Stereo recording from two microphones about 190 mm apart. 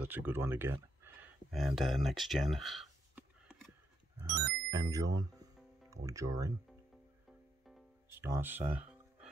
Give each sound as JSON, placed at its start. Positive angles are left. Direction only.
{"t": 0.0, "sound": "speech", "side_deg": -10}
{"t": 1.5, "sound": "speech", "side_deg": 0}
{"t": 4.2, "sound": "speech", "side_deg": -15}
{"t": 8.2, "sound": "speech", "side_deg": -10}